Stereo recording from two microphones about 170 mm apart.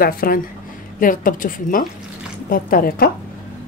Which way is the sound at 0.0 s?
60° left (ahead or behind).